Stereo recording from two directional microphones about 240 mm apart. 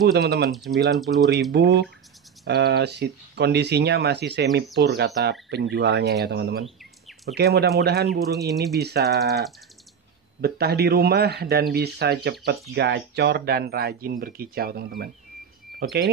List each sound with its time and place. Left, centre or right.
0.0 s speech: right
0.5 s speech: centre
1.5 s speech: right
6.6 s bird: centre
7.3 s speech: right
10.4 s speech: right